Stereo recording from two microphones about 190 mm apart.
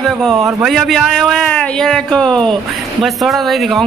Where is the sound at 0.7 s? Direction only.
Centre (ahead or behind).